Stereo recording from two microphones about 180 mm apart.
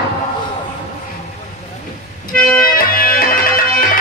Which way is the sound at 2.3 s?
5° left (ahead or behind).